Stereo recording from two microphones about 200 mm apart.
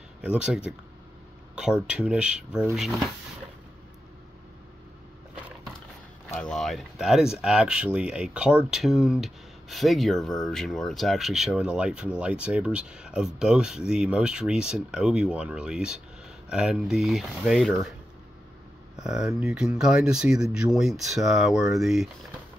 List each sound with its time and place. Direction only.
0.2 s speech: 5° right (ahead or behind)
6.3 s speech: 5° left (ahead or behind)
18.9 s speech: 5° right (ahead or behind)